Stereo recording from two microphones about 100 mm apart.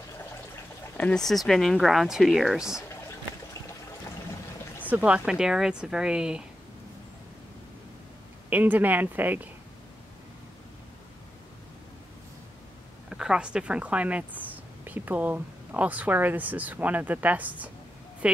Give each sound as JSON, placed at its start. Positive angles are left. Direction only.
{"t": 0.9, "sound": "speech", "side_deg": 15}
{"t": 1.2, "sound": "speech", "side_deg": 0}
{"t": 4.8, "sound": "a woman's voice", "side_deg": -15}
{"t": 8.5, "sound": "a woman's voice", "side_deg": -15}
{"t": 13.1, "sound": "a woman's voice", "side_deg": -10}
{"t": 18.2, "sound": "a sound", "side_deg": -10}